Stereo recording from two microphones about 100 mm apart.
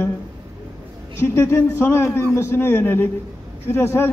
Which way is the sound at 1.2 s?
30° left (ahead or behind).